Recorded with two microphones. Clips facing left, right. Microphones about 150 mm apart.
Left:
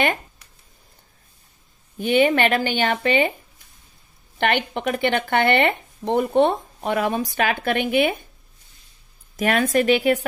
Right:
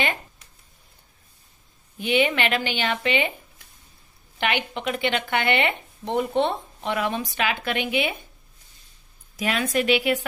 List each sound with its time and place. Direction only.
2.0 s speech: 45° left (ahead or behind)
4.4 s speech: 50° left (ahead or behind)
9.4 s speech: 55° left (ahead or behind)